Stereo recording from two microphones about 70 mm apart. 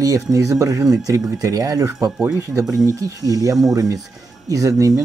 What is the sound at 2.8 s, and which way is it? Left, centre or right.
Speech, right.